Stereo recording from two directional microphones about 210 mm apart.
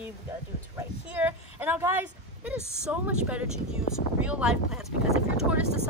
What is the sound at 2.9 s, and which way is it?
A woman's voice, 5° right (ahead or behind).